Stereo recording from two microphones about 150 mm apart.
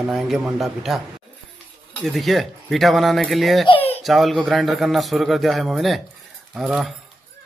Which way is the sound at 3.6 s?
40° left (ahead or behind).